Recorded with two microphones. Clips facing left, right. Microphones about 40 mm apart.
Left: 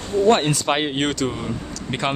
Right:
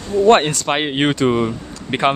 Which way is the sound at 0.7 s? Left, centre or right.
Right.